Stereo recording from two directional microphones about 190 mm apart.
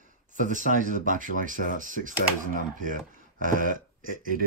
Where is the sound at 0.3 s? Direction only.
40° right (ahead or behind).